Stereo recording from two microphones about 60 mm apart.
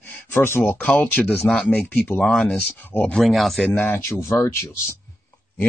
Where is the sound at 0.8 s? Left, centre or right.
Left.